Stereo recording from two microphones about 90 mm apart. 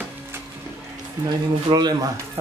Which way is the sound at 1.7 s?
50° right (ahead or behind).